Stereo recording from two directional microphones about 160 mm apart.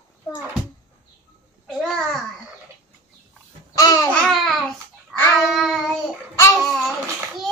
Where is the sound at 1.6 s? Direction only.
5° left (ahead or behind).